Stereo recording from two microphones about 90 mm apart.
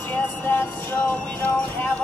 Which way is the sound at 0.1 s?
25° left (ahead or behind).